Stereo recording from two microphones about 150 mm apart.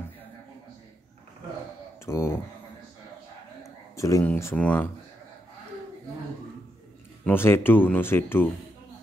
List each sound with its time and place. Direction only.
2.0 s speech: 20° left (ahead or behind)
3.9 s speech: 20° left (ahead or behind)
7.2 s speech: 15° left (ahead or behind)